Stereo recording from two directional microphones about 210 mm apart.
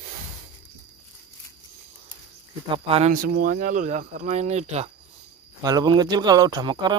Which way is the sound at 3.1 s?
40° right (ahead or behind).